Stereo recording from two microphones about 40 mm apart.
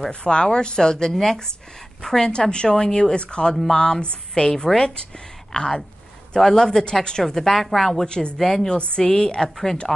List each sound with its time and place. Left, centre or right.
0.1 s speech: left
7.3 s a woman's voice: centre
8.0 s speech: left
9.9 s speech: centre